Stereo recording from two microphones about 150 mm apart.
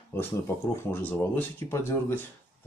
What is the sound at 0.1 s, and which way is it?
Speech, 15° left (ahead or behind).